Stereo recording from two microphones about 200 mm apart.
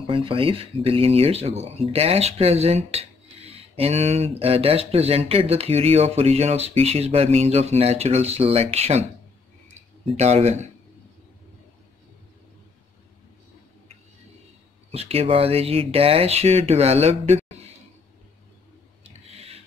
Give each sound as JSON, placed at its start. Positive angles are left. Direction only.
{"t": 0.0, "sound": "speech", "side_deg": -25}
{"t": 10.0, "sound": "speech", "side_deg": -35}
{"t": 14.9, "sound": "speech", "side_deg": -30}
{"t": 19.0, "sound": "a sound", "side_deg": -30}